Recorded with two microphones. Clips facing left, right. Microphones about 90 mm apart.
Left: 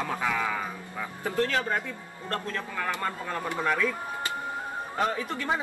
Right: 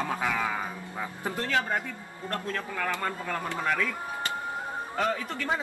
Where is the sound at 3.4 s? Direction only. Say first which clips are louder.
Left 3 dB; 15° left (ahead or behind).